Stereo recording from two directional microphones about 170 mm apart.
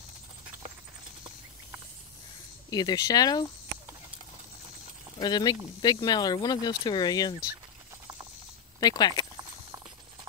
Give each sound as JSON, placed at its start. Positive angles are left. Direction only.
{"t": 2.7, "sound": "speech", "side_deg": 25}
{"t": 5.2, "sound": "speech", "side_deg": 25}
{"t": 8.7, "sound": "speech", "side_deg": 25}